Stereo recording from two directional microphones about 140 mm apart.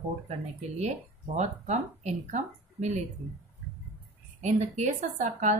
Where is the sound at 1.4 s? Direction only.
55° right (ahead or behind).